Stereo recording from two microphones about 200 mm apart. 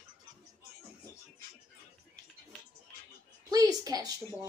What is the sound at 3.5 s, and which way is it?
Speech, 20° right (ahead or behind).